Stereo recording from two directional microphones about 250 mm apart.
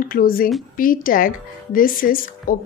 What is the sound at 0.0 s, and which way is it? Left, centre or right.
Speech, left.